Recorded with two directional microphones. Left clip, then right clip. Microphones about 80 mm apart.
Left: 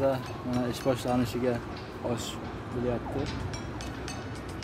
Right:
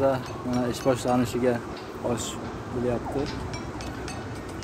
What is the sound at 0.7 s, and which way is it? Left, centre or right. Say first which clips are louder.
Speech: right 5 dB; centre.